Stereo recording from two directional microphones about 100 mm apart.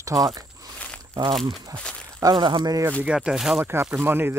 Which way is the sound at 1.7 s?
10° left (ahead or behind).